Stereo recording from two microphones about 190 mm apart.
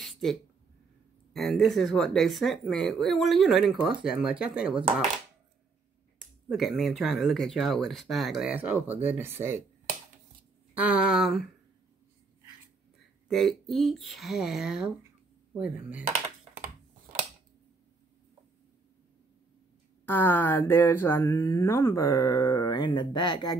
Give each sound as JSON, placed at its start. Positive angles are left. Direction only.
{"t": 0.0, "sound": "a sound", "side_deg": 0}
{"t": 1.3, "sound": "speech", "side_deg": 0}
{"t": 6.1, "sound": "speech", "side_deg": 0}
{"t": 10.7, "sound": "speech", "side_deg": -5}
{"t": 13.3, "sound": "speech", "side_deg": 0}
{"t": 20.1, "sound": "speech", "side_deg": 10}